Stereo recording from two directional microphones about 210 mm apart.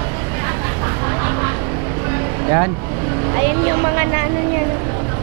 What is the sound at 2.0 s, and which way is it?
Vehicle, 15° right (ahead or behind).